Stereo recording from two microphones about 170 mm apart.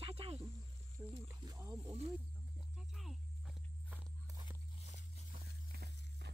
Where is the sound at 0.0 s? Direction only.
35° right (ahead or behind).